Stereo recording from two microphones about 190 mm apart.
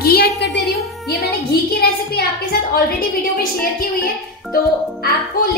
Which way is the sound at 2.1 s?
55° left (ahead or behind).